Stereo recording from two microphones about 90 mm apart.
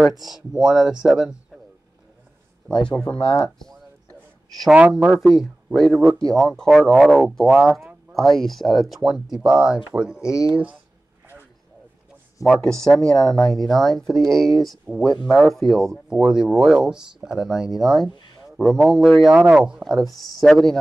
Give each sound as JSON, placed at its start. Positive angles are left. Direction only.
{"t": 0.2, "sound": "speech", "side_deg": -5}
{"t": 2.9, "sound": "speech", "side_deg": 15}
{"t": 4.7, "sound": "speech", "side_deg": -10}
{"t": 7.2, "sound": "speech", "side_deg": -5}
{"t": 12.6, "sound": "speech", "side_deg": 5}